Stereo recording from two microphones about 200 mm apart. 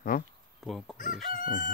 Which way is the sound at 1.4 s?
45° left (ahead or behind).